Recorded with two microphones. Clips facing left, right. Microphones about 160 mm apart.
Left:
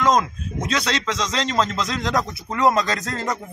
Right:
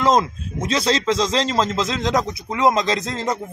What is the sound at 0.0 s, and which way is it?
A man's voice, 30° right (ahead or behind).